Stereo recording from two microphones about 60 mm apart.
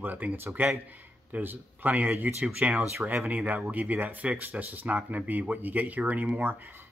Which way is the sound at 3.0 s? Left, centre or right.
Right.